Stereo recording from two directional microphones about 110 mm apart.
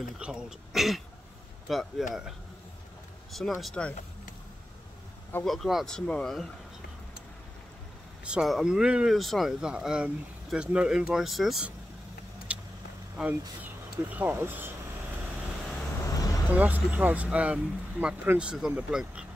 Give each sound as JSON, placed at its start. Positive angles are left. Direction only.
{"t": 0.2, "sound": "speech", "side_deg": -5}
{"t": 5.4, "sound": "speech", "side_deg": 0}
{"t": 8.3, "sound": "speech", "side_deg": -5}
{"t": 13.2, "sound": "speech", "side_deg": -10}
{"t": 16.0, "sound": "vehicle", "side_deg": 30}
{"t": 16.5, "sound": "speech", "side_deg": -15}